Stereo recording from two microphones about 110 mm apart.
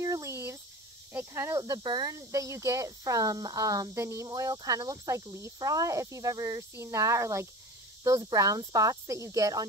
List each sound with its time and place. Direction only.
0.0 s a sound: 30° right (ahead or behind)
1.1 s speech: 25° right (ahead or behind)
1.8 s speech: 40° right (ahead or behind)